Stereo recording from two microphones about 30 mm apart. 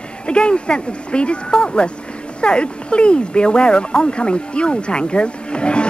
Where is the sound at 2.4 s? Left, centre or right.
Left.